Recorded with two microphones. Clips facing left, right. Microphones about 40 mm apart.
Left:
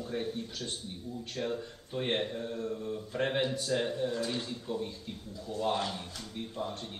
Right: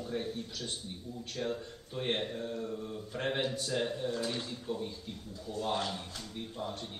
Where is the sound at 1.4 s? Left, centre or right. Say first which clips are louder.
Left 1 dB; centre.